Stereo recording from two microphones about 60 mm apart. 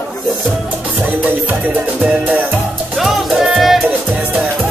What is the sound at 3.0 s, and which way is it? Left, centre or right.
Music, centre.